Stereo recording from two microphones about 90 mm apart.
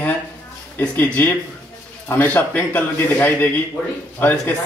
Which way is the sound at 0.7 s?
25° left (ahead or behind).